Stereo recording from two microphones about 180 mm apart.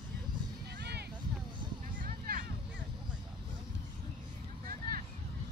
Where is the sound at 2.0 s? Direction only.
50° right (ahead or behind).